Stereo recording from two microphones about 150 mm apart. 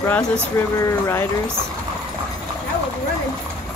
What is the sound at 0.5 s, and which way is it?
Speech, 20° left (ahead or behind).